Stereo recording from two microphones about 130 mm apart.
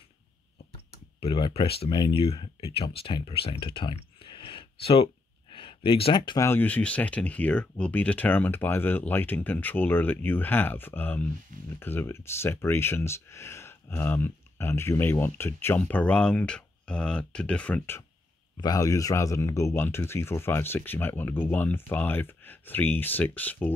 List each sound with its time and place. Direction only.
1.2 s speech: 45° left (ahead or behind)
6.3 s speech: 20° left (ahead or behind)
18.6 s speech: 25° left (ahead or behind)